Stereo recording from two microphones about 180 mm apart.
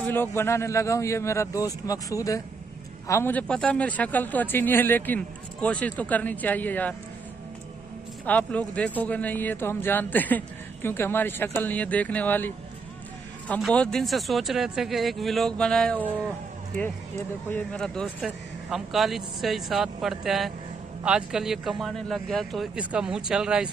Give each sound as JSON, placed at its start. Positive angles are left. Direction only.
{"t": 0.1, "sound": "a man's voice", "side_deg": 10}
{"t": 8.3, "sound": "a man's voice", "side_deg": 5}
{"t": 13.6, "sound": "speech", "side_deg": 5}
{"t": 17.5, "sound": "speech", "side_deg": 5}